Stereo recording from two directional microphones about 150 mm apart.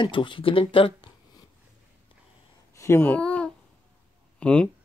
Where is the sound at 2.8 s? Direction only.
15° left (ahead or behind).